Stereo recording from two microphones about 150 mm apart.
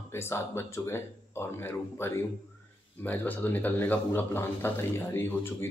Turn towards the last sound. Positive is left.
turn(degrees=15)  # may be behind; listen again after turning